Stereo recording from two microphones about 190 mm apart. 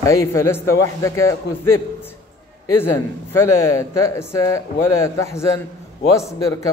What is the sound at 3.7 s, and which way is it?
A man's voice, 15° left (ahead or behind).